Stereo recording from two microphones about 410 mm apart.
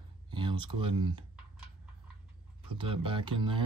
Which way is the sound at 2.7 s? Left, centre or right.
Centre.